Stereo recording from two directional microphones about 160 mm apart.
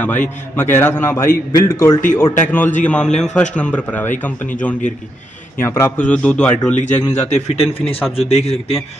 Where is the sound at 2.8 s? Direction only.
5° left (ahead or behind).